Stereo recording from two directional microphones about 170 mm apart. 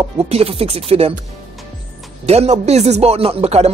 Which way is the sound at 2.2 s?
40° right (ahead or behind).